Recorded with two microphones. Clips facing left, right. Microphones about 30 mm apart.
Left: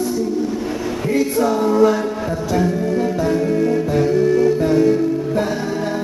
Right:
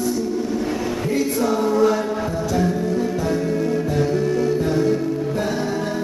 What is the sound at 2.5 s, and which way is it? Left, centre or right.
Music, centre.